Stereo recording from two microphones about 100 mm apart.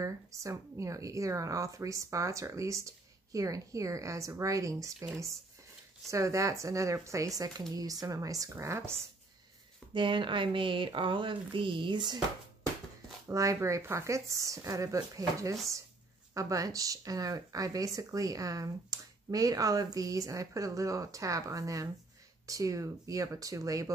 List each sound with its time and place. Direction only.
0.0 s speech: 30° right (ahead or behind)
6.0 s speech: 30° right (ahead or behind)
9.9 s speech: 55° right (ahead or behind)
13.3 s speech: 35° right (ahead or behind)